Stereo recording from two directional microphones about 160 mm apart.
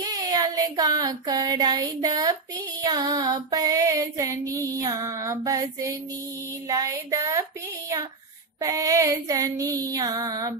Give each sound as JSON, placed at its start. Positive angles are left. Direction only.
{"t": 0.0, "sound": "child singing", "side_deg": -25}
{"t": 8.5, "sound": "child singing", "side_deg": -20}